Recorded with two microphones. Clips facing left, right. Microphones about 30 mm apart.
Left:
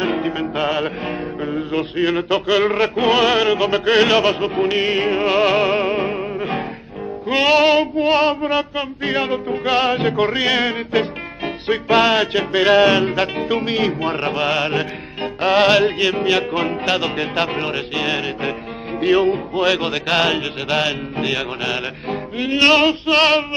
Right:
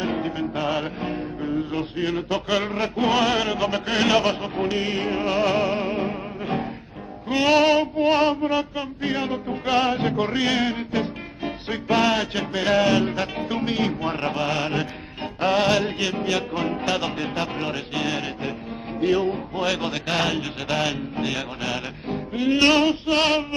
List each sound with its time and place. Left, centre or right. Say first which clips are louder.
0.0 s music: left 5 dB; left
19.6 s music: left 6 dB; left